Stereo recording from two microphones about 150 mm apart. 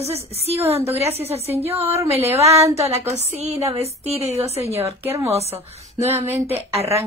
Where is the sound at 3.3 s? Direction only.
45° right (ahead or behind).